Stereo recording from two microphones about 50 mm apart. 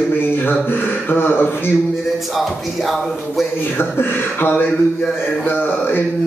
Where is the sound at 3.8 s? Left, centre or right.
Left.